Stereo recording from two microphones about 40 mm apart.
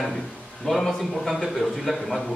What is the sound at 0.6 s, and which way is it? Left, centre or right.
Speech, centre.